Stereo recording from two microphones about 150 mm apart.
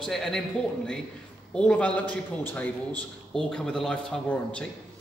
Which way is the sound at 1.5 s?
5° left (ahead or behind).